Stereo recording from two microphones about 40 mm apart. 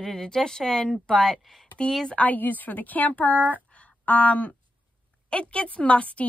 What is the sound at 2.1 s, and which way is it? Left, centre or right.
A woman's voice, left.